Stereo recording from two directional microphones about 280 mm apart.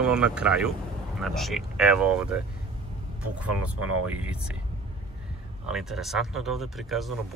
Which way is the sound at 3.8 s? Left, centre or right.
Right.